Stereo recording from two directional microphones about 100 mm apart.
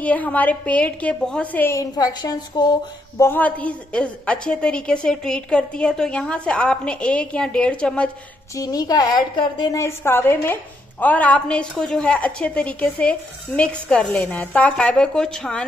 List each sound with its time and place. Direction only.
0.0 s a woman's voice: 15° left (ahead or behind)
1.8 s a woman's voice: 35° left (ahead or behind)
3.2 s a woman's voice: 20° left (ahead or behind)
8.5 s a woman's voice: 40° left (ahead or behind)
9.7 s a woman's voice: 30° left (ahead or behind); by 15.6 s 5° left (ahead or behind)